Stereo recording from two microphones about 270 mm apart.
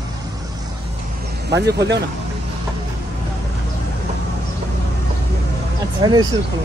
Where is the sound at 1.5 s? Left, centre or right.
Right.